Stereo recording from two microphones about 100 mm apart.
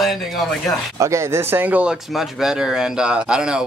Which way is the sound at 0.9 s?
30° right (ahead or behind).